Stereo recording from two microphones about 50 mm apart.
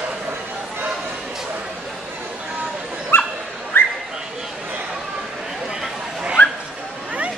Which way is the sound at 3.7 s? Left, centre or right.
Left.